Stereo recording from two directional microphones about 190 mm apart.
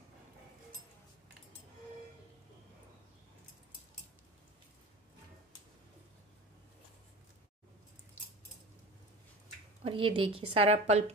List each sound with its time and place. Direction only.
9.8 s a woman's voice: 30° right (ahead or behind)